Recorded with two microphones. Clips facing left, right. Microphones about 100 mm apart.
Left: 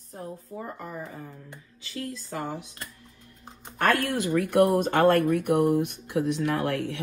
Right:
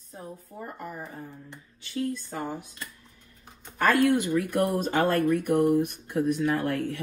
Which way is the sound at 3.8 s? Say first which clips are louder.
Right 2 dB; 65° left (ahead or behind).